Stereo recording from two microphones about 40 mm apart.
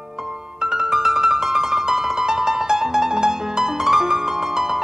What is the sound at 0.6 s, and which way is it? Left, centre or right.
Music, centre.